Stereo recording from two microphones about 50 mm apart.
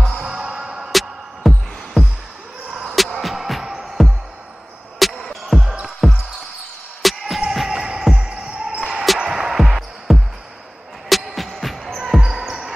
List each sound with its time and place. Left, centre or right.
0.2 s music: centre
1.5 s music: centre
3.0 s music: centre
6.0 s basketball bounce: centre
7.0 s music: centre
7.5 s music: centre
8.3 s basketball bounce: centre
9.2 s music: centre
12.2 s basketball bounce: centre